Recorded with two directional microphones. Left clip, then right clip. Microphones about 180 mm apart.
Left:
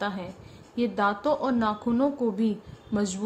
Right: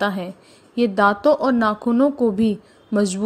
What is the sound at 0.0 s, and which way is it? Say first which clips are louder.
A woman's voice: right 9 dB; 40° right (ahead or behind).